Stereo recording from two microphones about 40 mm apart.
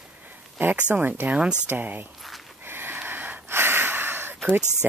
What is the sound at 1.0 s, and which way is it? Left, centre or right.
Speech, right.